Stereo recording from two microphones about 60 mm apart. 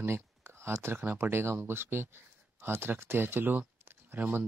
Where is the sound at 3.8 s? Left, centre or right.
Right.